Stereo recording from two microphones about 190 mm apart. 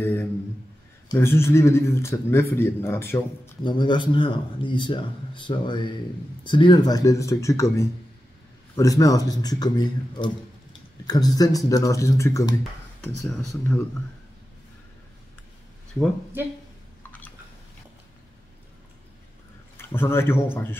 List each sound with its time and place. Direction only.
0.0 s a man's voice: 10° left (ahead or behind)
3.6 s a man's voice: 25° left (ahead or behind)
19.8 s a man's voice: 10° left (ahead or behind)